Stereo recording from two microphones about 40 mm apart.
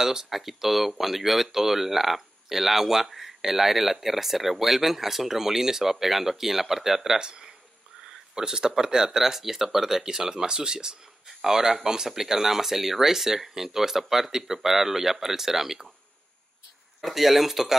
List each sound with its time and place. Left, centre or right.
0.0 s speech: centre
17.0 s speech: centre